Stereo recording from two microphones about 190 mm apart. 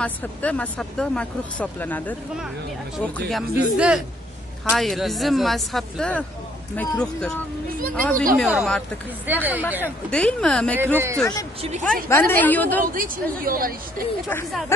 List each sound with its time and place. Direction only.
0.0 s speech: 5° left (ahead or behind); by 9.9 s 10° right (ahead or behind)
10.1 s speech: 5° left (ahead or behind)
10.8 s speech: 10° right (ahead or behind)
11.8 s speech: 5° left (ahead or behind)
12.8 s speech: 45° right (ahead or behind)